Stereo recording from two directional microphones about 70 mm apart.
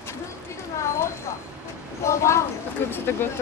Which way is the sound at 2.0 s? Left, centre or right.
Left.